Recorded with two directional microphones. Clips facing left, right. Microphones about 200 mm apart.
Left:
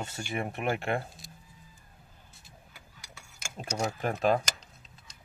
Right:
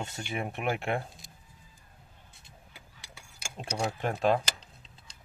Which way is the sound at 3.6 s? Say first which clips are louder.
Even; 35° right (ahead or behind).